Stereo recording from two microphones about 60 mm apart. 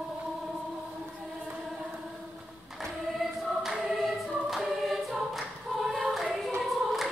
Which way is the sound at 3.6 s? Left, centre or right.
Centre.